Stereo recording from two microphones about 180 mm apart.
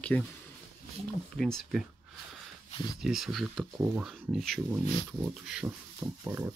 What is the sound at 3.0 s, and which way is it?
Speech, centre (ahead or behind).